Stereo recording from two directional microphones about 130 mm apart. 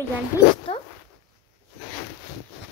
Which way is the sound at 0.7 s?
45° left (ahead or behind).